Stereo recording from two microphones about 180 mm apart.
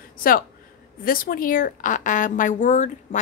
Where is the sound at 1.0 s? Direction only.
50° left (ahead or behind).